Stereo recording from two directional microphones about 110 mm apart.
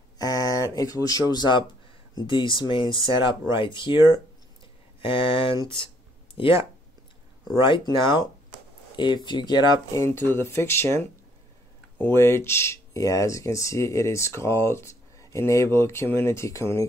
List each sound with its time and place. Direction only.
0.2 s a sound: 30° left (ahead or behind)
1.3 s speech: 40° left (ahead or behind)
7.6 s speech: 45° left (ahead or behind)
9.9 s speech: 25° left (ahead or behind)